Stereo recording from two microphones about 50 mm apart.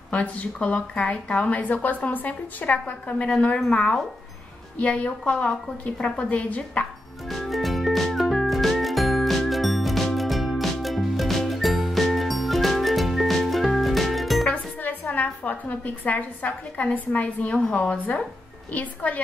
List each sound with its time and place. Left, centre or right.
0.1 s a woman's voice: left
7.2 s music: centre
14.5 s a sound: left
16.4 s a woman's voice: left